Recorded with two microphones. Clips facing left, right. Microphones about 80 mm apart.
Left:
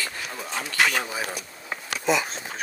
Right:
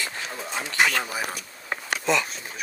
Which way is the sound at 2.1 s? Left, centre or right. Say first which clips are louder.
Left 1 dB; centre.